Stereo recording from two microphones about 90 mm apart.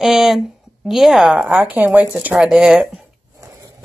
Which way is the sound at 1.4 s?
20° right (ahead or behind).